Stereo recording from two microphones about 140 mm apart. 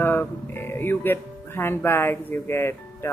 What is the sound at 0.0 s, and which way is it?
Speech, 15° left (ahead or behind).